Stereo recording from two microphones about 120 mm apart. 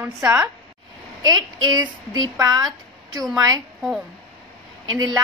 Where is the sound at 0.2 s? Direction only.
20° right (ahead or behind).